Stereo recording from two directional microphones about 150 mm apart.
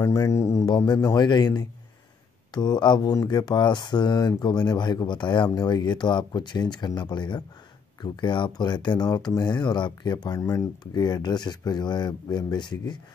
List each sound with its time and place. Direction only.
0.0 s speech: 25° left (ahead or behind)